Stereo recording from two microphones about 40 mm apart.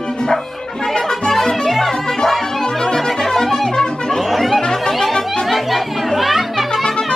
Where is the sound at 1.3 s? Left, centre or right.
Centre.